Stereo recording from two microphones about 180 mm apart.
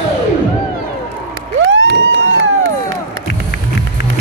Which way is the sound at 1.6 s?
90° right.